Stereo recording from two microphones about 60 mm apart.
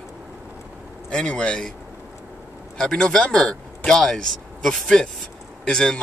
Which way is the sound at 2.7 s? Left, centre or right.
Centre.